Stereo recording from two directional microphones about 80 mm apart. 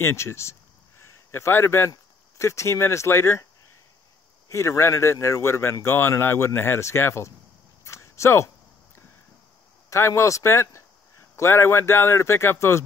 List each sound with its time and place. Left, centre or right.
0.0 s a man's voice: left
4.5 s speech: left
7.8 s a sound: left
9.8 s speech: left